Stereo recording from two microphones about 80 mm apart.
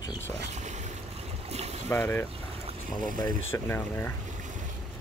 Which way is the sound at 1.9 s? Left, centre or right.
Left.